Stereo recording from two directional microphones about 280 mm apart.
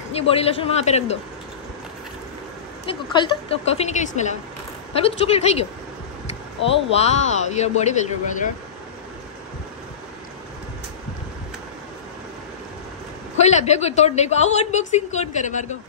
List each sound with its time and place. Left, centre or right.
0.1 s a woman's voice: left
3.7 s a woman's voice: left
13.4 s a woman's voice: left